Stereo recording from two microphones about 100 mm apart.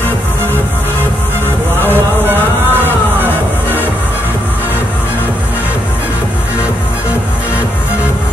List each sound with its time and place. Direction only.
2.2 s music: 20° right (ahead or behind)